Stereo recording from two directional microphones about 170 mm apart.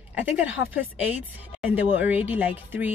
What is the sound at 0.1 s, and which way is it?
A woman's voice, 10° right (ahead or behind).